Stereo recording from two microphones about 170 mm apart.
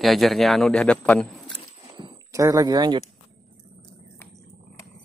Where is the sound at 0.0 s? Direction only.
Centre (ahead or behind).